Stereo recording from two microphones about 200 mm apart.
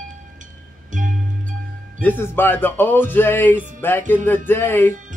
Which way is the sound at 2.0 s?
10° left (ahead or behind).